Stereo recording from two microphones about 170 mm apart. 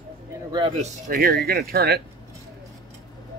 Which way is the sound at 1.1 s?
65° right (ahead or behind).